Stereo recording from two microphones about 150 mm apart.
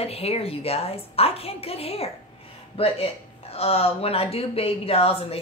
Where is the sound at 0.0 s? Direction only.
40° left (ahead or behind).